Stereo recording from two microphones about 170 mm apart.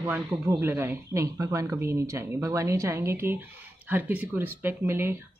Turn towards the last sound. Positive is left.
turn(degrees=-15)  # may be behind; listen again after turning